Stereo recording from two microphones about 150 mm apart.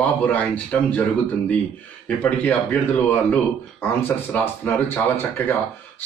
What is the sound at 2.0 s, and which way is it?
Speech, 10° left (ahead or behind).